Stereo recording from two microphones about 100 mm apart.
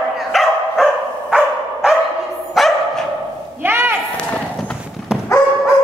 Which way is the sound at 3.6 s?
20° right (ahead or behind).